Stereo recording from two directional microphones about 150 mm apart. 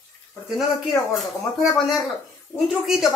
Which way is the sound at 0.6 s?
Centre (ahead or behind).